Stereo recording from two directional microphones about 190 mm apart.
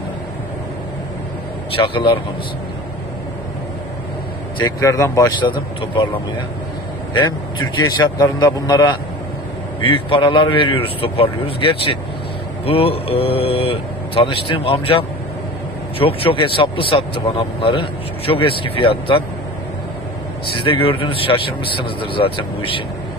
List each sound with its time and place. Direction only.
1.7 s speech: 25° left (ahead or behind)
4.6 s speech: 20° left (ahead or behind)
7.2 s speech: 25° left (ahead or behind)
20.5 s speech: 25° left (ahead or behind)